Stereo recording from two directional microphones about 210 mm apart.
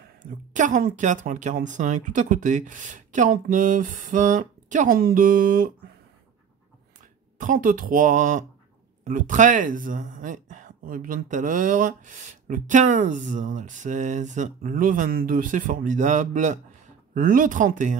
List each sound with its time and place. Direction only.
0.2 s speech: 35° right (ahead or behind)
7.3 s speech: 40° right (ahead or behind)